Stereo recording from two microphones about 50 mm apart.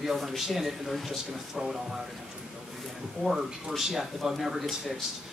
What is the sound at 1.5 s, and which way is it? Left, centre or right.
Speech, centre.